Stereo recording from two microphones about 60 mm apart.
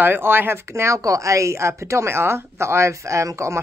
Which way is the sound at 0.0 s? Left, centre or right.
Right.